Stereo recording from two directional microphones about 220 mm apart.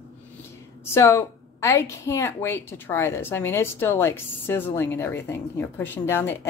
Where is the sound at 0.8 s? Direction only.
10° left (ahead or behind).